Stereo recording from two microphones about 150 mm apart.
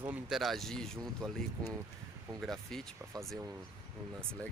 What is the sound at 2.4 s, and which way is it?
Speech, 5° left (ahead or behind).